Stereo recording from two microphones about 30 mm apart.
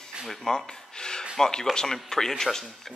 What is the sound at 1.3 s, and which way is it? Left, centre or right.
Speech, left.